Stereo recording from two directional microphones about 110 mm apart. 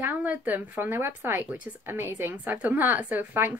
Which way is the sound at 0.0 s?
15° right (ahead or behind).